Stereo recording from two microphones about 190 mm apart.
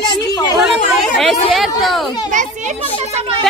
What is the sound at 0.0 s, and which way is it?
Chatter, 20° left (ahead or behind).